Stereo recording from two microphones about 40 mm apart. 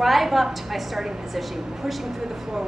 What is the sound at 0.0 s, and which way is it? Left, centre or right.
A woman's voice, centre.